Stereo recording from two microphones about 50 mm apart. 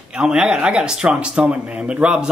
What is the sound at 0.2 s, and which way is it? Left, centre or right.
A man's voice, centre.